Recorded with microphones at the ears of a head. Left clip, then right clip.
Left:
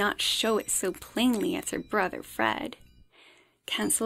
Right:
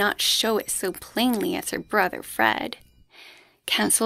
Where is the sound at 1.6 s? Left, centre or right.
Right.